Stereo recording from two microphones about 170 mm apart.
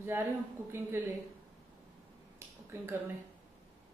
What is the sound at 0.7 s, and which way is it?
Speech, 15° right (ahead or behind).